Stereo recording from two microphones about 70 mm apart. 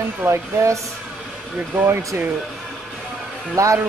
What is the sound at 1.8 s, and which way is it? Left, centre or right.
Speech, right.